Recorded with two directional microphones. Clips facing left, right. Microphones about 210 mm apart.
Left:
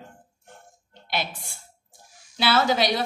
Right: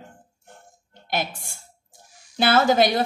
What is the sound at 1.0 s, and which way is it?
A woman's voice, 50° right (ahead or behind).